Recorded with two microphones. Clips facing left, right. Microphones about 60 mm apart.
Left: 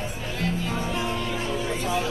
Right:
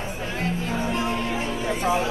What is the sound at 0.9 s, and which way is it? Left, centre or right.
Music, right.